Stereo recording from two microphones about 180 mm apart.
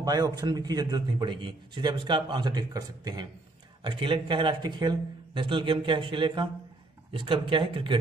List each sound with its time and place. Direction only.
0.0 s a man's voice: 20° right (ahead or behind)